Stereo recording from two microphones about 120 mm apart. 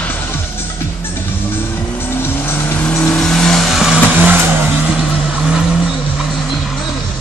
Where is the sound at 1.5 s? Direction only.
20° left (ahead or behind); by 5.8 s 5° right (ahead or behind).